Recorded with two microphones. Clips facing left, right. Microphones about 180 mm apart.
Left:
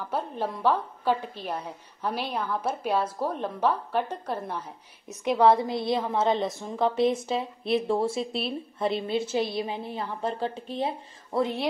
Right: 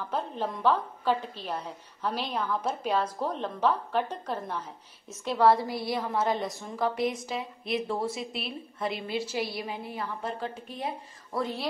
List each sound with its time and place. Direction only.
0.0 s a woman's voice: 10° left (ahead or behind)